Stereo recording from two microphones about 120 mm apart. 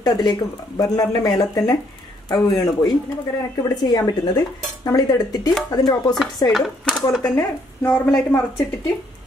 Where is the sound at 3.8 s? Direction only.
35° left (ahead or behind).